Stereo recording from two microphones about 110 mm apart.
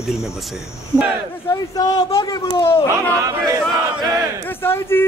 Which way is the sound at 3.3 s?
30° right (ahead or behind).